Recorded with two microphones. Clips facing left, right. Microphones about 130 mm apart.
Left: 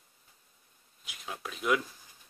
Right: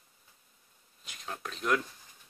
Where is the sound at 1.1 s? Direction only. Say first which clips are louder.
Even; 5° left (ahead or behind).